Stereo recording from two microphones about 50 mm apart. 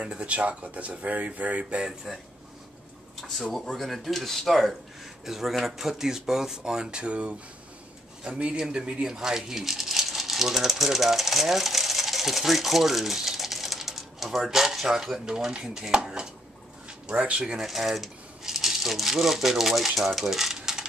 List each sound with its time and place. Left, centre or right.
0.0 s speech: right
2.1 s speech: centre
17.6 s speech: centre
20.2 s coin: centre